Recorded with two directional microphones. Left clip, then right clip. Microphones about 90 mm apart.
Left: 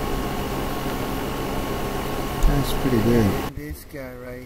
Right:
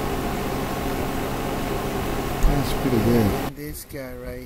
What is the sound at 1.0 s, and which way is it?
Vehicle, 35° right (ahead or behind).